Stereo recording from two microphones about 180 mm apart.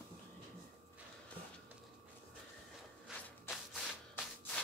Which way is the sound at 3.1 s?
Centre (ahead or behind).